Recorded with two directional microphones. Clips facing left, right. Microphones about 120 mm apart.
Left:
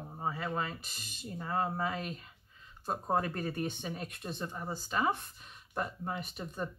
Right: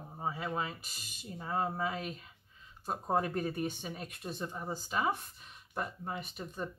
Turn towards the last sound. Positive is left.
turn(degrees=0)  # may be behind; listen again after turning